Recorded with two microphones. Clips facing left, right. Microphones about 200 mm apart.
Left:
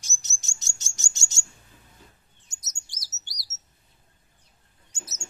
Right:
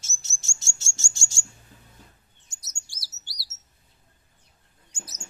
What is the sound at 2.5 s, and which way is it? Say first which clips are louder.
Chirp: left 1 dB; 20° left (ahead or behind).